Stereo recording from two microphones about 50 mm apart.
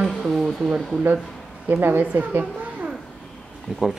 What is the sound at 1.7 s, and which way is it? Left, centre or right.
Speech, right.